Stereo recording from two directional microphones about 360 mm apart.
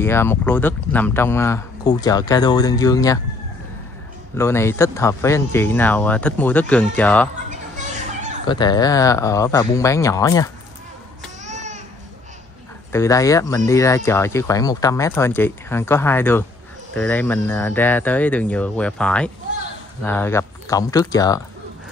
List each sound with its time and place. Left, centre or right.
0.0 s speech: centre
4.4 s speech: centre
8.5 s speech: centre
11.4 s a sound: centre
12.9 s speech: centre